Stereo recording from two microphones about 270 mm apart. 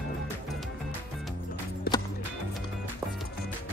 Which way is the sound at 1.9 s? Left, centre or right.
Left.